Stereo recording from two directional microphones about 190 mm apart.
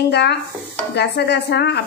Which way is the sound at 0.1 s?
60° left (ahead or behind).